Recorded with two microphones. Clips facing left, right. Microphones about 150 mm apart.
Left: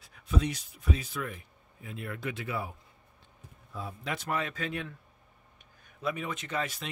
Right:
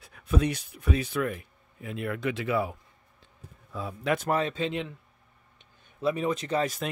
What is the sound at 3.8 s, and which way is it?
Speech, 90° right.